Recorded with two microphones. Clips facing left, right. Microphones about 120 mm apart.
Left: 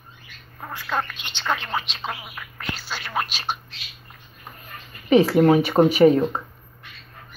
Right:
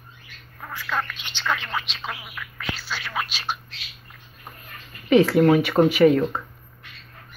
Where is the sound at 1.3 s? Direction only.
40° left (ahead or behind).